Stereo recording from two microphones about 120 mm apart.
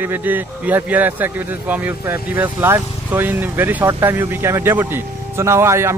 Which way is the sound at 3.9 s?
25° right (ahead or behind).